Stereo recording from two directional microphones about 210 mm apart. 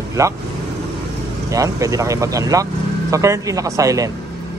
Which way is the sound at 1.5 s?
15° right (ahead or behind).